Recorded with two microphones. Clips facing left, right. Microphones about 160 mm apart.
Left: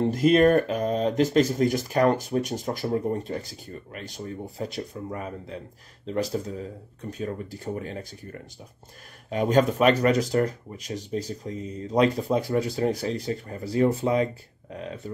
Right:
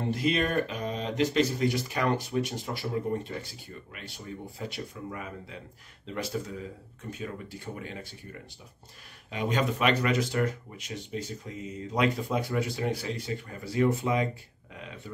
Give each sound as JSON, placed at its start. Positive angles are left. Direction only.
{"t": 0.1, "sound": "speech", "side_deg": 45}
{"t": 4.6, "sound": "speech", "side_deg": 40}